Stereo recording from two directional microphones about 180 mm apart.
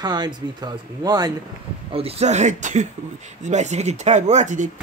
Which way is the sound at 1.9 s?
35° right (ahead or behind).